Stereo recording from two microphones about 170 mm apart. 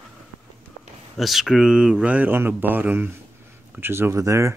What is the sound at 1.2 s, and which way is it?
Speech, centre (ahead or behind).